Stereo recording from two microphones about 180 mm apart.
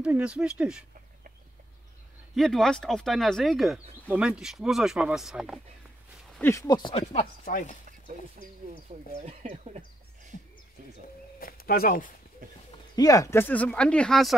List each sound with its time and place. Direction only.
0.0 s speech: 5° right (ahead or behind)
2.3 s speech: centre (ahead or behind)
6.3 s speech: 15° left (ahead or behind); by 7.2 s 35° left (ahead or behind)
7.4 s speech: 50° left (ahead or behind)
9.2 s speech: 35° right (ahead or behind)
11.3 s speech: 55° left (ahead or behind)
12.9 s speech: 20° left (ahead or behind); by 14.3 s 5° left (ahead or behind)